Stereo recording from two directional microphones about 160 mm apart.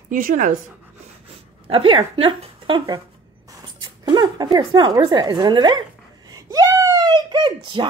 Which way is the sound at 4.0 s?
25° right (ahead or behind).